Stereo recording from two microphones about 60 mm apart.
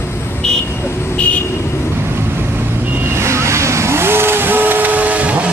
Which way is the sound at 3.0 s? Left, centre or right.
Right.